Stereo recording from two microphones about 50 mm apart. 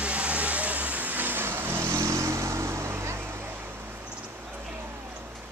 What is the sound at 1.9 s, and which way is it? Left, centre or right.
Vehicle, right.